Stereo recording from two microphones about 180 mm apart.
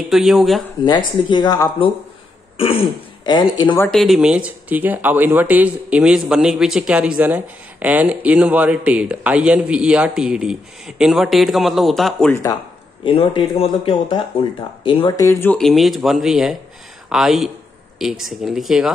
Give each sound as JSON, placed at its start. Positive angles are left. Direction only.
{"t": 0.1, "sound": "speech", "side_deg": 0}
{"t": 0.8, "sound": "speech", "side_deg": 25}
{"t": 3.8, "sound": "speech", "side_deg": 0}
{"t": 13.0, "sound": "speech", "side_deg": 30}